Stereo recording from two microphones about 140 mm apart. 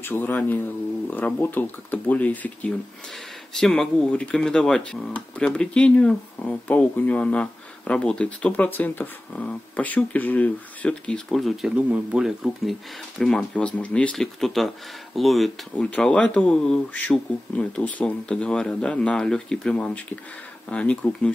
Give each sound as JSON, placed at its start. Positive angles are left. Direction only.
{"t": 0.0, "sound": "speech", "side_deg": 15}